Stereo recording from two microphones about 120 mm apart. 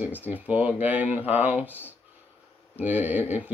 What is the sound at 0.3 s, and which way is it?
Speech, 15° right (ahead or behind).